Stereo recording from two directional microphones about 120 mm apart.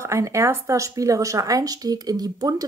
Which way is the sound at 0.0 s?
25° right (ahead or behind).